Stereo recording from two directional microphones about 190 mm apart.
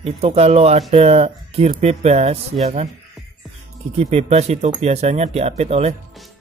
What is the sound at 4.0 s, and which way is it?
Speech, 35° right (ahead or behind).